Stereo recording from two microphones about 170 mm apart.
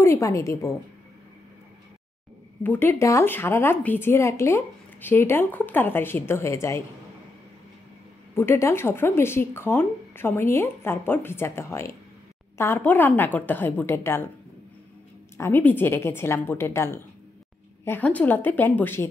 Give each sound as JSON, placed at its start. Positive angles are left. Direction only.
{"t": 0.0, "sound": "speech", "side_deg": 15}
{"t": 2.6, "sound": "speech", "side_deg": 10}
{"t": 8.4, "sound": "speech", "side_deg": 15}
{"t": 15.3, "sound": "speech", "side_deg": 15}